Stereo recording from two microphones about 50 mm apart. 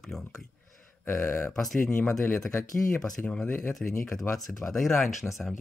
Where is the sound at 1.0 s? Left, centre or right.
Left.